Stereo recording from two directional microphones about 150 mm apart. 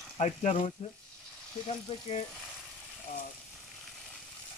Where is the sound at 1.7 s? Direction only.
40° left (ahead or behind).